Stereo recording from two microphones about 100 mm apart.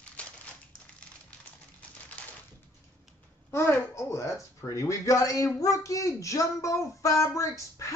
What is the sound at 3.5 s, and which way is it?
Speech, 25° left (ahead or behind).